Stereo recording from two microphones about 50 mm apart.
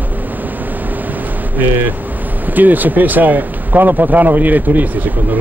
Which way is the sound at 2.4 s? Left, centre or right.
Right.